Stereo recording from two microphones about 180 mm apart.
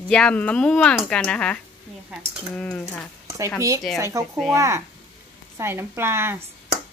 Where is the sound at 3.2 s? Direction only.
15° right (ahead or behind).